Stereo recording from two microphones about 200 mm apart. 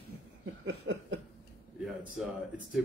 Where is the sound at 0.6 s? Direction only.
70° right (ahead or behind).